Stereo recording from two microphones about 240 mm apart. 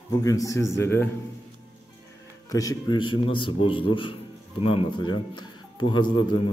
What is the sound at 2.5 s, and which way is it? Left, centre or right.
Speech, centre.